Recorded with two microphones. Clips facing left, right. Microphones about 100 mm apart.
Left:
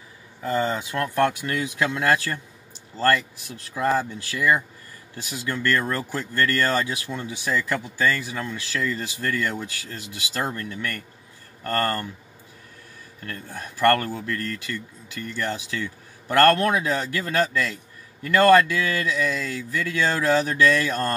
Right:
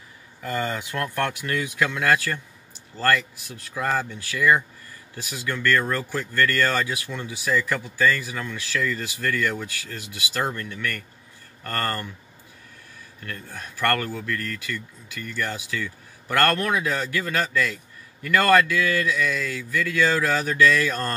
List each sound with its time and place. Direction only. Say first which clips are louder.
0.4 s speech: left 3 dB; 20° left (ahead or behind)
13.5 s speech: left 5 dB; 20° left (ahead or behind)